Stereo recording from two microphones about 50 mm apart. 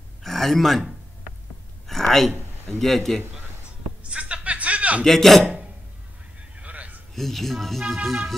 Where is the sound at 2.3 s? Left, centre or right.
Right.